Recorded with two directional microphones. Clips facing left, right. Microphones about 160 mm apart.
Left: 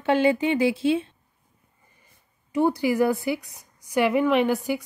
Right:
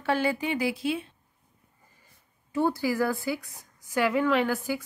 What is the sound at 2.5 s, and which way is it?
A woman's voice, 20° left (ahead or behind).